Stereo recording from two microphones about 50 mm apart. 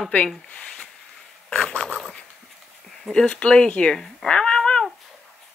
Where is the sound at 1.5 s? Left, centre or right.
Centre.